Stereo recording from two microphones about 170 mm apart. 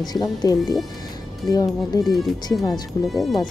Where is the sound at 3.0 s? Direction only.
Centre (ahead or behind).